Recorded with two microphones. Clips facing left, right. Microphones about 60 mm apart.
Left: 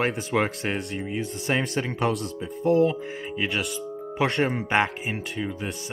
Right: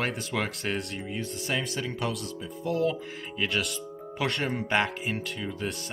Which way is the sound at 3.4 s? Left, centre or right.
Centre.